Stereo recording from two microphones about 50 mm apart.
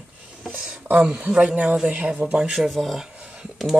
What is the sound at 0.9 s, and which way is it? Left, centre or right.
Speech, right.